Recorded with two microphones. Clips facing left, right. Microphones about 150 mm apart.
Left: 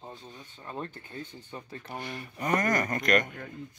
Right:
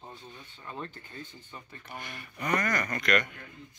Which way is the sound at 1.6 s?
35° left (ahead or behind).